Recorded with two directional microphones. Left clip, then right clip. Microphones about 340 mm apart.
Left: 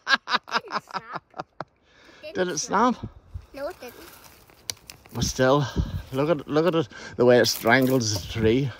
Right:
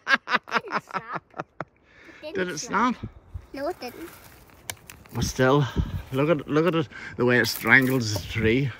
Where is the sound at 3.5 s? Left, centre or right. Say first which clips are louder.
Right 3 dB; right.